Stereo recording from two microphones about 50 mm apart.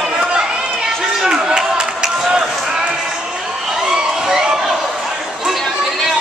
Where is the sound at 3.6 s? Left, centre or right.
Centre.